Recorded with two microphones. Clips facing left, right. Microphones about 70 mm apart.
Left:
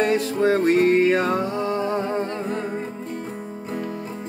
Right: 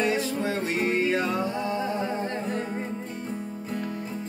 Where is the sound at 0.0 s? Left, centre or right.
Left.